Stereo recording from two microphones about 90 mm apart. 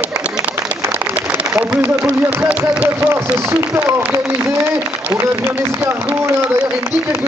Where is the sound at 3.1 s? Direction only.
30° right (ahead or behind).